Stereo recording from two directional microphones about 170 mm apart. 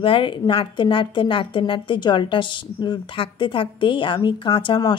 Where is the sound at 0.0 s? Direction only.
30° left (ahead or behind).